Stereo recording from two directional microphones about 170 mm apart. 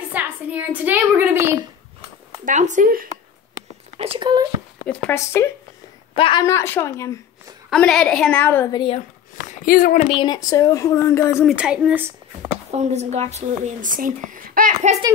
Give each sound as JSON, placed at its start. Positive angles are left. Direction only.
{"t": 0.1, "sound": "a woman's voice", "side_deg": -10}
{"t": 2.4, "sound": "speech", "side_deg": -45}
{"t": 4.0, "sound": "speech", "side_deg": -30}
{"t": 4.8, "sound": "speech", "side_deg": 5}
{"t": 6.1, "sound": "speech", "side_deg": 30}
{"t": 6.4, "sound": "a woman's voice", "side_deg": 15}
{"t": 8.7, "sound": "speech", "side_deg": 30}
{"t": 9.5, "sound": "speech", "side_deg": 60}
{"t": 10.0, "sound": "a woman's voice", "side_deg": 30}
{"t": 11.4, "sound": "speech", "side_deg": -5}
{"t": 12.7, "sound": "speech", "side_deg": -40}